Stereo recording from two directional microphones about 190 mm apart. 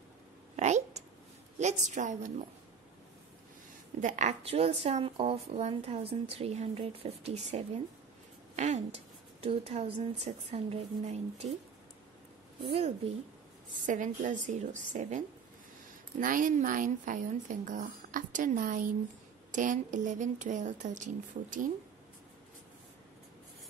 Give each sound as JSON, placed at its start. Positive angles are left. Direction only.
{"t": 0.6, "sound": "a sound", "side_deg": -35}
{"t": 1.6, "sound": "a woman's voice", "side_deg": -40}
{"t": 4.0, "sound": "a woman's voice", "side_deg": -40}
{"t": 12.6, "sound": "a woman's voice", "side_deg": -30}
{"t": 13.8, "sound": "a woman's voice", "side_deg": -40}